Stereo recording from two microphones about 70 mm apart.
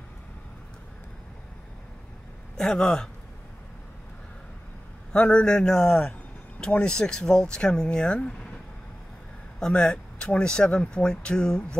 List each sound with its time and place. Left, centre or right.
2.5 s speech: centre
5.1 s speech: centre
9.6 s speech: centre